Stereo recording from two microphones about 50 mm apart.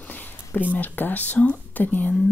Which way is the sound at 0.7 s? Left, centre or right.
Left.